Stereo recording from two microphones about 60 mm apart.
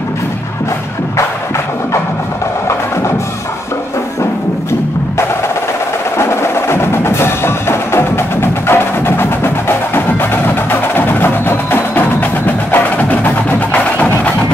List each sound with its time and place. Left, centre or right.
6.1 s wood block: left